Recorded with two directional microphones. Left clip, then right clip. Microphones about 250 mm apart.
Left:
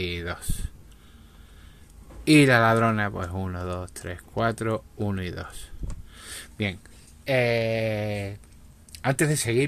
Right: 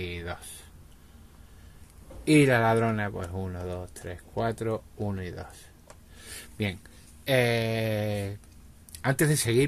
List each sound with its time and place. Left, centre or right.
0.0 s speech: centre
2.2 s speech: centre
6.1 s a sound: centre
7.2 s speech: centre